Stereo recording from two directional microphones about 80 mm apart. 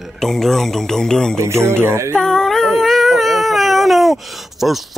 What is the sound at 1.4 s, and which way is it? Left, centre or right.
Jingle bell, right.